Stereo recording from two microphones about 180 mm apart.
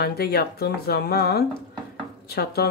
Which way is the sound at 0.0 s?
60° left (ahead or behind).